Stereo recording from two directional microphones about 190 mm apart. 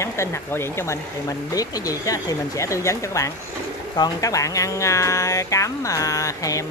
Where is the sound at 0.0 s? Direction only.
15° left (ahead or behind).